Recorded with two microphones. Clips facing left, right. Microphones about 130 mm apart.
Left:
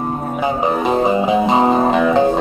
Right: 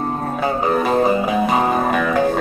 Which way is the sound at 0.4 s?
20° left (ahead or behind).